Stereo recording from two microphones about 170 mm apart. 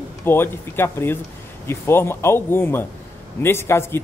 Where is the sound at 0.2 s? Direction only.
15° left (ahead or behind).